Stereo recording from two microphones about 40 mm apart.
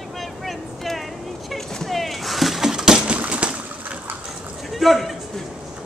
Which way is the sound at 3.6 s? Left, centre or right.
Right.